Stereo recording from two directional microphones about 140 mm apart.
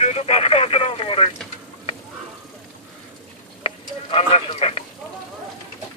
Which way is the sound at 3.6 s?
45° left (ahead or behind).